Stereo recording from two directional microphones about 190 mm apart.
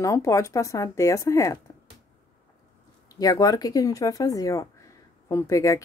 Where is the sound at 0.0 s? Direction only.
15° left (ahead or behind).